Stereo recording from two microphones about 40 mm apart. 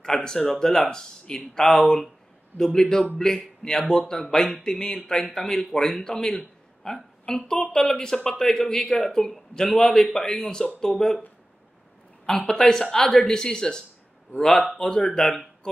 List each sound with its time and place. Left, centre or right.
0.0 s a woman's voice: centre
4.1 s a woman's voice: centre
12.3 s a woman's voice: centre